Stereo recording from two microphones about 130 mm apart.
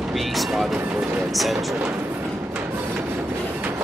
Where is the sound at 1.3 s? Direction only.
Centre (ahead or behind).